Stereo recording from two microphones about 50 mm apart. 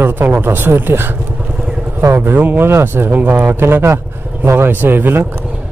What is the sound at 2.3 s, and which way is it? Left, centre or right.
Speech, right.